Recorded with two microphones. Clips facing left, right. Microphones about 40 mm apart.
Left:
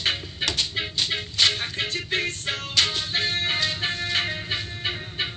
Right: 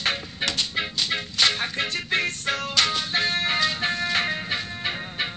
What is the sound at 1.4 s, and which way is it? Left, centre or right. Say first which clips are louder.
Music: even; right.